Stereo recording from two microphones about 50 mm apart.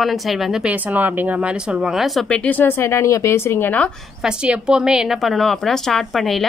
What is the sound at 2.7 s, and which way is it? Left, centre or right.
Speech, left.